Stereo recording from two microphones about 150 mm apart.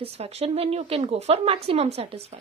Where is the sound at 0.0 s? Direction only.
45° right (ahead or behind).